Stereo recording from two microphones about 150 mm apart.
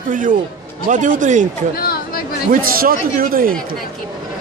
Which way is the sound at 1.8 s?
90° left.